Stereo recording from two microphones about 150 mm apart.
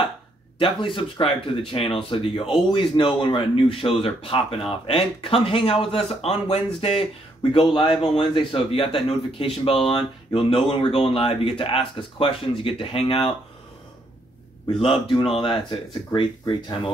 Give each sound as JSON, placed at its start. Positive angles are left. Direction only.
{"t": 0.6, "sound": "speech", "side_deg": 35}
{"t": 14.8, "sound": "speech", "side_deg": 35}